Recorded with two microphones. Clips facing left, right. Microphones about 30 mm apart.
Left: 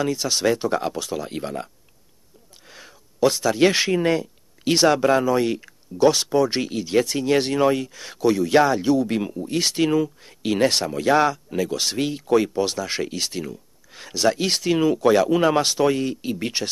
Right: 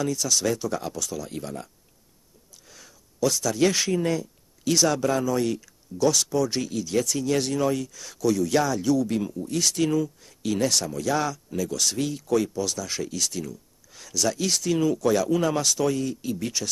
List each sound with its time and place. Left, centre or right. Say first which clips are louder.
0.0 s speech: left 4 dB; left
2.7 s speech: left 6 dB; left